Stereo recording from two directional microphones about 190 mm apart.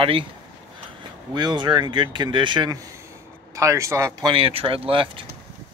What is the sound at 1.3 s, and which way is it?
Speech, 25° right (ahead or behind).